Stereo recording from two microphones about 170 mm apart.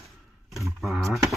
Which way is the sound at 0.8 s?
Centre (ahead or behind).